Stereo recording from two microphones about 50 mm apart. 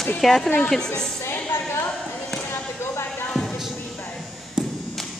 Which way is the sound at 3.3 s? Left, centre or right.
Centre.